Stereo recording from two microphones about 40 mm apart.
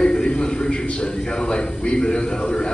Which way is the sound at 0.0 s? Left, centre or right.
Left.